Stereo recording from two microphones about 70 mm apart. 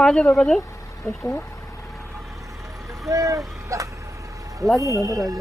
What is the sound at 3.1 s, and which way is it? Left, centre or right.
Speech, right.